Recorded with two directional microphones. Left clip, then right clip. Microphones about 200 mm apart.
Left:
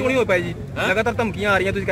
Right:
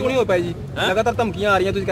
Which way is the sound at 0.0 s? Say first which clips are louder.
Even; 30° right (ahead or behind).